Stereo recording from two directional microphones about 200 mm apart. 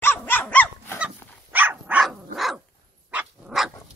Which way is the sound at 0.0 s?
10° left (ahead or behind).